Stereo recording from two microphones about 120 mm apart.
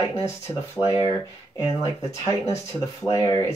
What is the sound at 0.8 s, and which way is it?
Speech, 55° left (ahead or behind).